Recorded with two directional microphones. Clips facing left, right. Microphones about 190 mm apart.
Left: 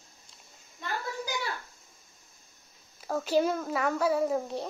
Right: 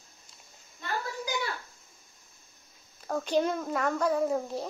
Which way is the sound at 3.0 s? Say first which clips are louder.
Left 1 dB; 5° left (ahead or behind).